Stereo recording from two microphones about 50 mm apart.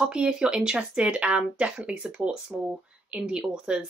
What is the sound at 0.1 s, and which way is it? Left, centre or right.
Speech, centre.